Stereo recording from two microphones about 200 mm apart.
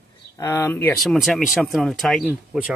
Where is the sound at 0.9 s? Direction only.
Centre (ahead or behind).